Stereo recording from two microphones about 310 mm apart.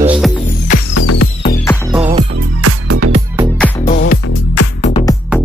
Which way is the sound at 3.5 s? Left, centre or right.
Centre.